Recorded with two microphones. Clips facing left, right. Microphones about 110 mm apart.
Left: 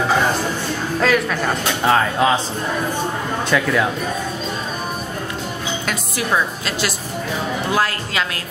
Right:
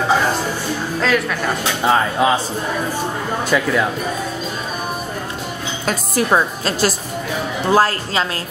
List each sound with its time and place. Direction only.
1.0 s speech: centre (ahead or behind)
3.4 s speech: centre (ahead or behind)
5.9 s a woman's voice: 35° right (ahead or behind)